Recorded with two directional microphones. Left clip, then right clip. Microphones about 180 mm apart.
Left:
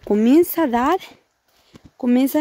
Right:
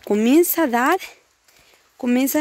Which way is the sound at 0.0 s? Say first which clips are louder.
Left 1 dB; 20° left (ahead or behind).